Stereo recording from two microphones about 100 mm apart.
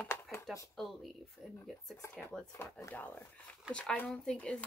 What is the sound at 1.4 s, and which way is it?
Speech, 30° left (ahead or behind).